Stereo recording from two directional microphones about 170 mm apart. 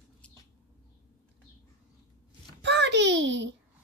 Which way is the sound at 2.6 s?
90° right.